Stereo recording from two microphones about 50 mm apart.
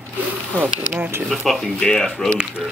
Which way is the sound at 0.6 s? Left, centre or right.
Right.